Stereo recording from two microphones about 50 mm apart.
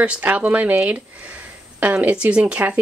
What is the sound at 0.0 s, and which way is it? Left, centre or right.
Speech, right.